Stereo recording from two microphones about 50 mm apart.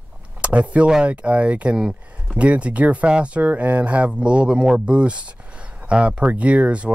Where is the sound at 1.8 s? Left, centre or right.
Centre.